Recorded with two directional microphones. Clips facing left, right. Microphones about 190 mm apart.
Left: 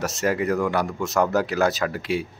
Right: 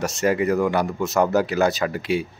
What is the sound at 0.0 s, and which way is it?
Speech, centre (ahead or behind).